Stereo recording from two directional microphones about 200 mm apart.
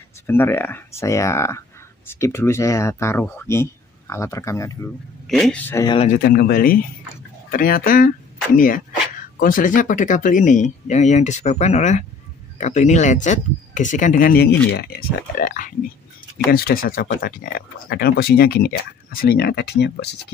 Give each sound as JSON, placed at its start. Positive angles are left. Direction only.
{"t": 0.3, "sound": "speech", "side_deg": 10}
{"t": 5.2, "sound": "a man's voice", "side_deg": 0}
{"t": 6.0, "sound": "speech", "side_deg": 45}